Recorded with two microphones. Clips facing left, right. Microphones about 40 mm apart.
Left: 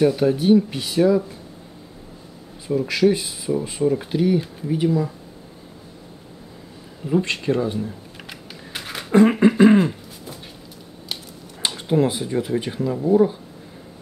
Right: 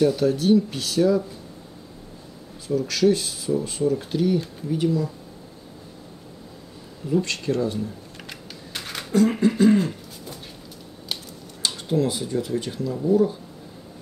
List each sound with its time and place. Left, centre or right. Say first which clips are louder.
0.0 s speech: left 2 dB; centre
2.7 s speech: left 2 dB; centre
7.1 s speech: left 3 dB; left
8.3 s typewriter: left 2 dB; centre
9.1 s a sound: left 5 dB; left
11.6 s speech: left 3 dB; left